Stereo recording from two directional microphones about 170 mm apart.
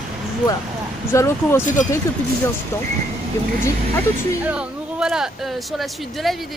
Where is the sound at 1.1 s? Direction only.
15° left (ahead or behind).